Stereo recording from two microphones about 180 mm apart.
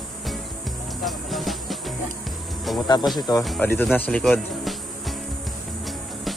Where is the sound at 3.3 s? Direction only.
25° left (ahead or behind).